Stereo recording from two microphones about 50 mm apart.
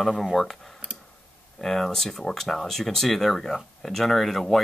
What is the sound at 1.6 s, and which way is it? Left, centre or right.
Speech, centre.